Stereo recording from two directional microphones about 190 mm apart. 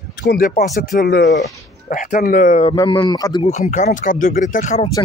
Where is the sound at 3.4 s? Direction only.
40° left (ahead or behind).